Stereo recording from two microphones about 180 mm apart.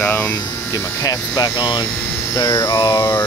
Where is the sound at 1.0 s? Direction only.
20° left (ahead or behind).